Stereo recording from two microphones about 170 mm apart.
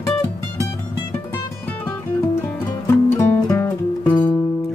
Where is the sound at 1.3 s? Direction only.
10° left (ahead or behind).